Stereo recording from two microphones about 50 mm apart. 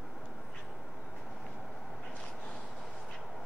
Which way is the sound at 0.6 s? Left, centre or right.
Centre.